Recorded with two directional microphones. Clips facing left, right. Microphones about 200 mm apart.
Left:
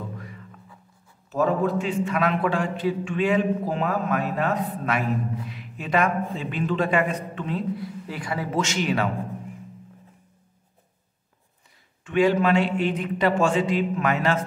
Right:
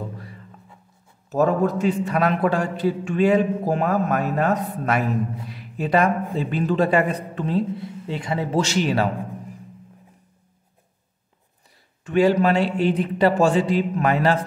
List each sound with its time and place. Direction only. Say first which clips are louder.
0.2 s a sound: even; 35° right (ahead or behind)
1.3 s a man's voice: right 3 dB; 40° right (ahead or behind)
12.0 s a man's voice: right 3 dB; 40° right (ahead or behind)